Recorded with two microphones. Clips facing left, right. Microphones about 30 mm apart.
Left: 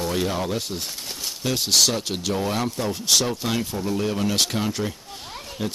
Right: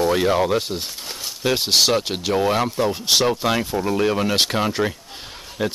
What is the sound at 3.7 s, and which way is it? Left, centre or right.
Speech, right.